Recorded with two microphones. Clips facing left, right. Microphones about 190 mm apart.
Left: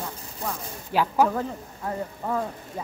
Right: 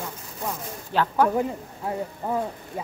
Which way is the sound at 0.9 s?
10° left (ahead or behind).